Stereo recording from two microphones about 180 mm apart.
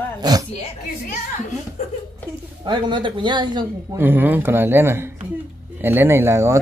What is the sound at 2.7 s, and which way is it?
Speech, 25° right (ahead or behind).